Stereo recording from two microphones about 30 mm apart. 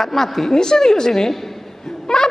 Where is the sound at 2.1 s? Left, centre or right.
Centre.